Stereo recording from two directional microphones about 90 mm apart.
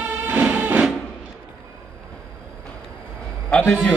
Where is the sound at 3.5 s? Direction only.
10° left (ahead or behind).